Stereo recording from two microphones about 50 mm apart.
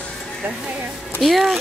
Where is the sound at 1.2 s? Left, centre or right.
Centre.